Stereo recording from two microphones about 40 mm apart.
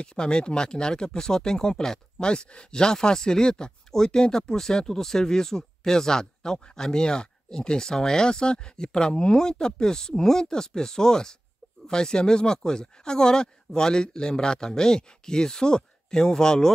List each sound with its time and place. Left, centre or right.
0.0 s speech: left